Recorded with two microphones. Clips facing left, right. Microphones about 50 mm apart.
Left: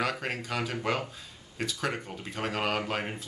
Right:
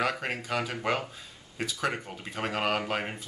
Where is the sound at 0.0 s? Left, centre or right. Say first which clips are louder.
Right 1 dB; centre.